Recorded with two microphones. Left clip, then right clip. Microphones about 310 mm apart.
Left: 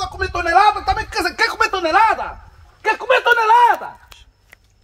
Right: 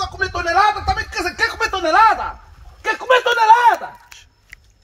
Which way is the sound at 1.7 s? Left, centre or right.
Centre.